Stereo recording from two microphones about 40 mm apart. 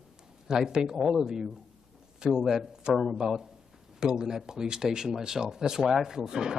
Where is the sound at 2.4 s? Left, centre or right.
Centre.